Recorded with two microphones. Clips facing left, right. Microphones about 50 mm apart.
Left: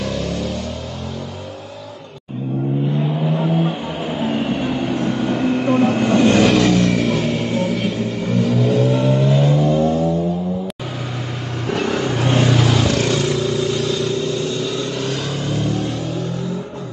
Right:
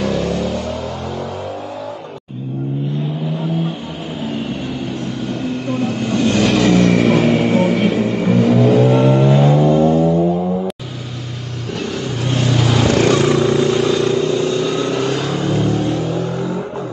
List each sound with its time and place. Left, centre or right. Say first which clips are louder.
0.0 s vehicle: right 4 dB; centre
3.3 s vehicle: left 2 dB; centre
6.4 s vehicle: even; centre
6.7 s music: right 4 dB; centre
8.8 s vehicle: right 4 dB; centre
11.7 s vehicle: left 3 dB; centre
12.4 s vehicle: right 1 dB; centre